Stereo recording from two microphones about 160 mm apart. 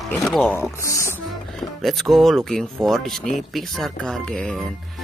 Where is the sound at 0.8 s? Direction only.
20° left (ahead or behind).